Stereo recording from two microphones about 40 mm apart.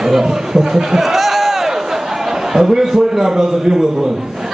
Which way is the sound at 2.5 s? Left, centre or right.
Centre.